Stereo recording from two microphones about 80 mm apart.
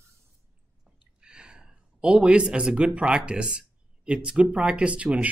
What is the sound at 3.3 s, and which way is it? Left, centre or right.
Speech, centre.